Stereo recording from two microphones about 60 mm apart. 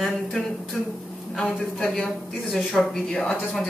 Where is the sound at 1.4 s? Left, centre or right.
Centre.